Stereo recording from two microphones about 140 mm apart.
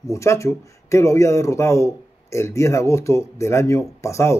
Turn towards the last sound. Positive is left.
turn(degrees=20)  # may be behind; listen again after turning